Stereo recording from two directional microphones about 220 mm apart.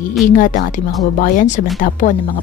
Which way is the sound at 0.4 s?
35° left (ahead or behind).